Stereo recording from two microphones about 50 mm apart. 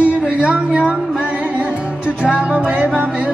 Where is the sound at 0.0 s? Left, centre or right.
Centre.